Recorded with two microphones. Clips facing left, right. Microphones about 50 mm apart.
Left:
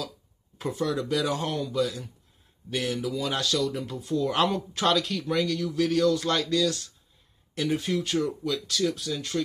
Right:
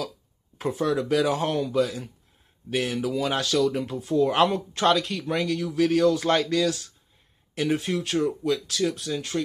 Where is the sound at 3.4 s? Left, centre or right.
Right.